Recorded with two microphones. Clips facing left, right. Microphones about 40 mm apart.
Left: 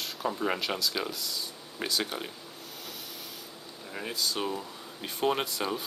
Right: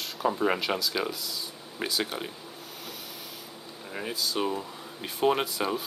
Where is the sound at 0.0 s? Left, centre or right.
Centre.